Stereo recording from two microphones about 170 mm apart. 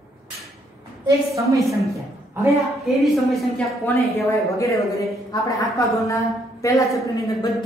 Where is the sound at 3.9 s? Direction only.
15° left (ahead or behind).